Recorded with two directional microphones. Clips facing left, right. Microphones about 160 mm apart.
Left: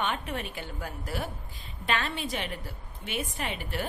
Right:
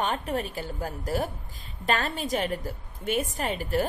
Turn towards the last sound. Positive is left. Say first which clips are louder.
# right 7 dB
turn(degrees=-40)  # may be behind; listen again after turning